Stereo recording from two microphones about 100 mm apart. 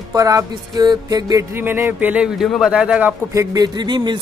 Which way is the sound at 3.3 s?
35° right (ahead or behind).